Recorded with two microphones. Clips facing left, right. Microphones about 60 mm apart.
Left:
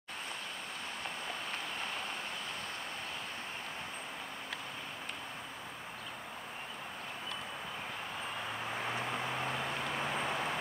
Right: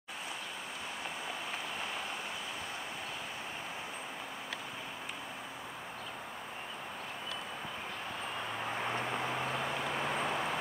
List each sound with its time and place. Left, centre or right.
8.7 s vehicle: centre